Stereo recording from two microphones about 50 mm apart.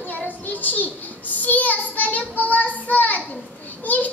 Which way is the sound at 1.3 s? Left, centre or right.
Left.